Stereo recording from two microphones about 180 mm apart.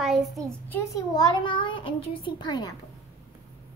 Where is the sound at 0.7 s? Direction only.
15° left (ahead or behind).